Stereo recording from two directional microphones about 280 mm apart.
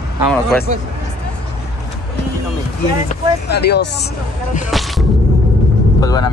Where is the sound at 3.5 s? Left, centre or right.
Left.